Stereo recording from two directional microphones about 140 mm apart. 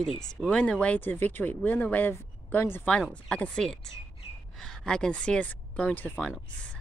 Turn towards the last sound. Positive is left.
turn(degrees=10)  # may be behind; listen again after turning